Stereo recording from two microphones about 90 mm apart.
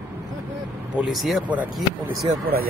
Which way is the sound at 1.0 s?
5° right (ahead or behind).